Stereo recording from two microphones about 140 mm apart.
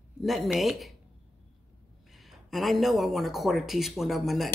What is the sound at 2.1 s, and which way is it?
Speech, centre (ahead or behind).